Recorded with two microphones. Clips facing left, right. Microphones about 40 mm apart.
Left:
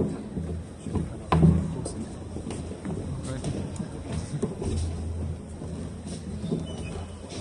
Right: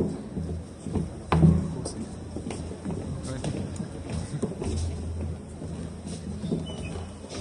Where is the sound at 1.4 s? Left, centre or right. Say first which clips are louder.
Right 1 dB; left.